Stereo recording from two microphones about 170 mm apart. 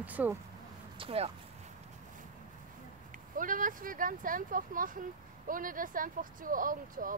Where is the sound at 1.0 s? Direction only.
35° right (ahead or behind).